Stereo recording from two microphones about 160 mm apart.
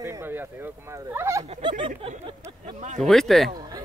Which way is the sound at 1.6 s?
30° right (ahead or behind).